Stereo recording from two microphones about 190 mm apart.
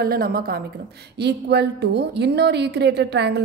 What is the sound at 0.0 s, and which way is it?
A woman's voice, 50° right (ahead or behind).